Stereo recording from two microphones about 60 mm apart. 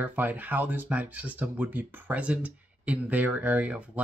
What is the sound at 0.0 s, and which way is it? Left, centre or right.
Speech, right.